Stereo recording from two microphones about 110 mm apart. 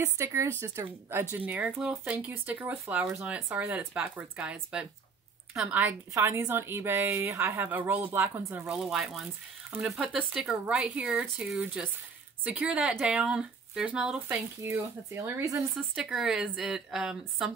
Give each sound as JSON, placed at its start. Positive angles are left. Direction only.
{"t": 0.0, "sound": "a woman's voice", "side_deg": -25}
{"t": 8.7, "sound": "speech", "side_deg": -5}
{"t": 14.6, "sound": "a woman's voice", "side_deg": -25}
{"t": 15.9, "sound": "speech", "side_deg": -5}